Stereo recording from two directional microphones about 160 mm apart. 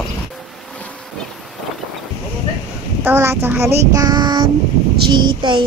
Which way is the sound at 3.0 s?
15° right (ahead or behind).